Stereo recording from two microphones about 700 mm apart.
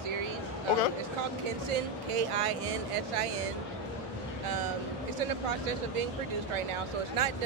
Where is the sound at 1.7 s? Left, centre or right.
Right.